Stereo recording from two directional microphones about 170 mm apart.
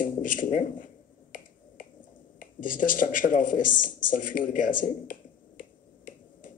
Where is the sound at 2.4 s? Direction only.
55° left (ahead or behind).